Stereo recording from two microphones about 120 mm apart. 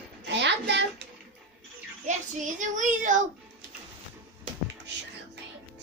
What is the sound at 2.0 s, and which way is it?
Child singing, 90° right.